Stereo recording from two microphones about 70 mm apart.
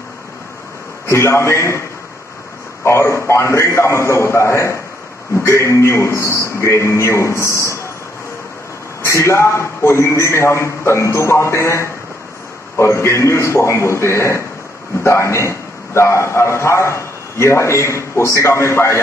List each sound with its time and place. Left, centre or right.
1.0 s a man's voice: left
9.0 s a man's voice: left